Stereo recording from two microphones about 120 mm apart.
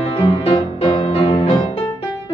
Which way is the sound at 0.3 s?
55° left (ahead or behind).